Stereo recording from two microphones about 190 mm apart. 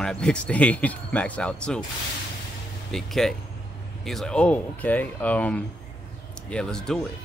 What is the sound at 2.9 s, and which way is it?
Speech, centre (ahead or behind).